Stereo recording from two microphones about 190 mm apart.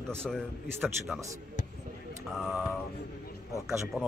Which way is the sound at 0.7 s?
5° right (ahead or behind).